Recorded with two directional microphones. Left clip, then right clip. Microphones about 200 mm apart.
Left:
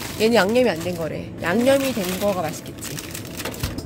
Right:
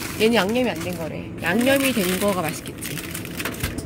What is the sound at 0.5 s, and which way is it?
Speech, 20° left (ahead or behind).